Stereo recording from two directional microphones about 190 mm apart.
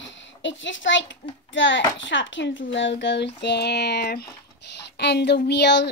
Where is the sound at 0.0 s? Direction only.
75° left (ahead or behind).